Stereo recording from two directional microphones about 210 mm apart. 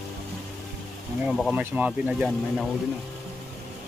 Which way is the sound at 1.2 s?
Centre (ahead or behind).